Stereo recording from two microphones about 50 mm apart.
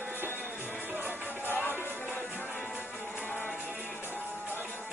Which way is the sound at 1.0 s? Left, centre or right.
Left.